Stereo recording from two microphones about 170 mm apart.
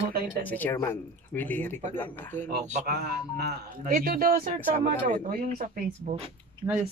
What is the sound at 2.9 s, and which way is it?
Speech, 70° right (ahead or behind).